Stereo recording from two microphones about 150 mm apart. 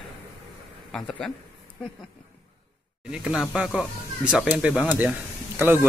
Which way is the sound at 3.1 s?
5° right (ahead or behind).